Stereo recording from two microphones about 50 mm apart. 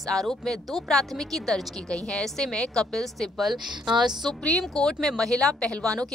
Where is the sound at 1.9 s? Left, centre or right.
Centre.